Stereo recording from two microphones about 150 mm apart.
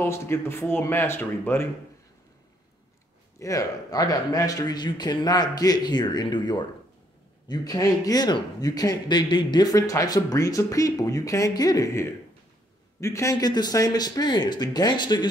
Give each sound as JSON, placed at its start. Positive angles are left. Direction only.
{"t": 0.0, "sound": "speech", "side_deg": 15}
{"t": 3.3, "sound": "speech", "side_deg": 20}